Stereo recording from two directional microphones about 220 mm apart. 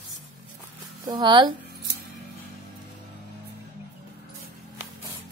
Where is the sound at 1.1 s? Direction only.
20° right (ahead or behind).